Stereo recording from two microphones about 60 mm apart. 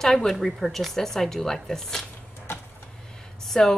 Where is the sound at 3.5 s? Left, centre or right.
Centre.